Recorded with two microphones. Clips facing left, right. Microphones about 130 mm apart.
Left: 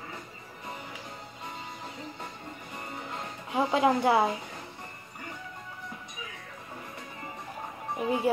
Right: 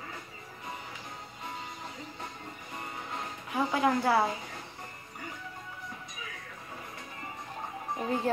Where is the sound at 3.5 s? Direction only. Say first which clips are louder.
Left 3 dB; 20° left (ahead or behind).